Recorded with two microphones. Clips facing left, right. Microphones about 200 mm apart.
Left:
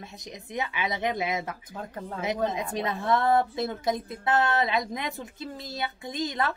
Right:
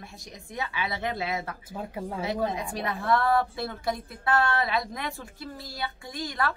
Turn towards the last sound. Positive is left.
turn(degrees=20)  # may be behind; listen again after turning